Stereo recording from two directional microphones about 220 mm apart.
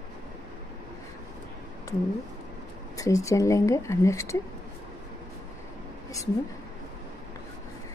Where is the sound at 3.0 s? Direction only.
15° left (ahead or behind).